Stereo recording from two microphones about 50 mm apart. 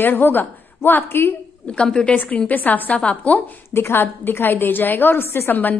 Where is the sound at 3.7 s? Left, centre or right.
Left.